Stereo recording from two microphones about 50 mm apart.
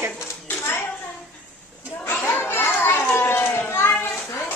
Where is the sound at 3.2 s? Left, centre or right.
Left.